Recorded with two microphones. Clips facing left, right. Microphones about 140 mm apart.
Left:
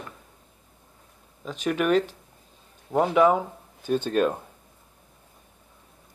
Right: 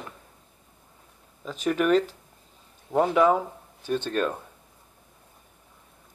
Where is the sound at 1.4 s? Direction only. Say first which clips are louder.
Right 1 dB; centre (ahead or behind).